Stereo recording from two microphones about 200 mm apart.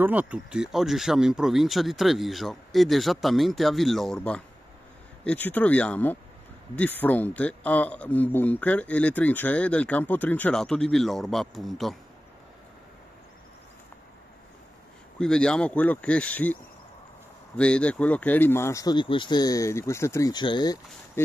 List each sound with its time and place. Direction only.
0.0 s speech: 10° right (ahead or behind)
15.1 s speech: 5° left (ahead or behind)
17.6 s speech: 5° left (ahead or behind)